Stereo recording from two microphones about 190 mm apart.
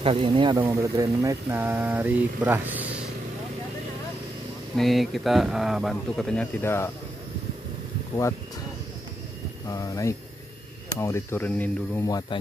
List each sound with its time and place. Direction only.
0.0 s speech: 25° right (ahead or behind); by 2.9 s 10° right (ahead or behind)
4.7 s speech: centre (ahead or behind)
9.7 s speech: 20° left (ahead or behind)